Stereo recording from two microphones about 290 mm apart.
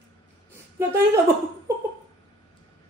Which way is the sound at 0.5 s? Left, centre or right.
Centre.